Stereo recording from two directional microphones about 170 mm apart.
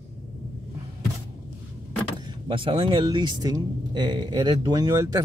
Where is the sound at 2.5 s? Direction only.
30° right (ahead or behind).